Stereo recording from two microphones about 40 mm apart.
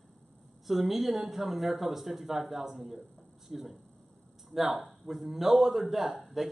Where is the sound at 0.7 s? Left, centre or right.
Centre.